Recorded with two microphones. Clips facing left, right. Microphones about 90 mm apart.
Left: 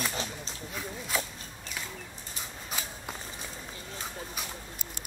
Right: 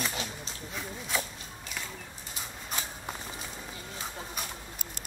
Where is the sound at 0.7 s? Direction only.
Centre (ahead or behind).